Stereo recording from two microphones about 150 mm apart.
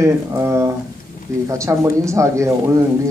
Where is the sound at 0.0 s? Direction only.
20° right (ahead or behind).